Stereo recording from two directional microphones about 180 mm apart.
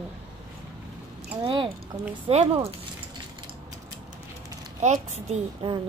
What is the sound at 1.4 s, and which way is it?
A woman's voice, 30° right (ahead or behind).